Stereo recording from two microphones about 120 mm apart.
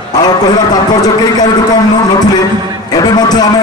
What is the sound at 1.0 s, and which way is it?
Speech, 35° left (ahead or behind).